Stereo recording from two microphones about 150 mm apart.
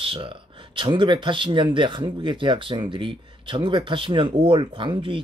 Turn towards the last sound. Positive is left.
turn(degrees=-35)  # may be behind; listen again after turning